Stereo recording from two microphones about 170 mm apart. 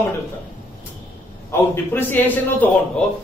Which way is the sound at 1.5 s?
10° left (ahead or behind).